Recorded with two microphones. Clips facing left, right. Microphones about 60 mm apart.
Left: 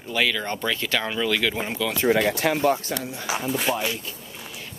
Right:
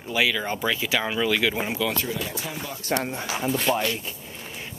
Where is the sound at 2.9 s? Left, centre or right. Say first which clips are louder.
Right 4 dB; right.